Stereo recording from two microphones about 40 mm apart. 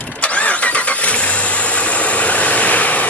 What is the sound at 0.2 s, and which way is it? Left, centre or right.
Vehicle, left.